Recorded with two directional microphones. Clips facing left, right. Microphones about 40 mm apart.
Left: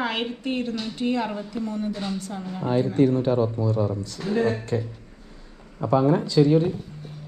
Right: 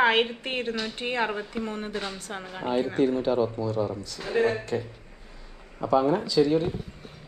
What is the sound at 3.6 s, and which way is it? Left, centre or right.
Speech, left.